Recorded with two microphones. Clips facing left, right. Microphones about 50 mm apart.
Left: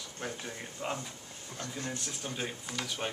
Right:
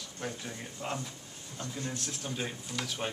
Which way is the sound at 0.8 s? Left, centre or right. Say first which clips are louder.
Even; centre.